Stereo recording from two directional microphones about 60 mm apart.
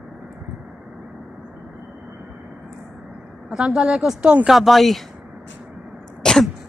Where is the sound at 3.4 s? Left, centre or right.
Centre.